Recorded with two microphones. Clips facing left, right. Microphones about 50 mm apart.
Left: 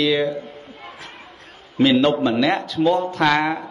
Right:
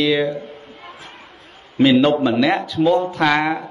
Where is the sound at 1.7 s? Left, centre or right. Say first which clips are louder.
Right 2 dB; centre.